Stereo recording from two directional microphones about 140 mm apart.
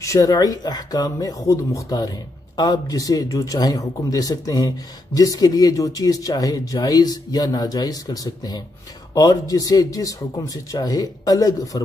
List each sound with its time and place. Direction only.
0.0 s speech: 25° left (ahead or behind)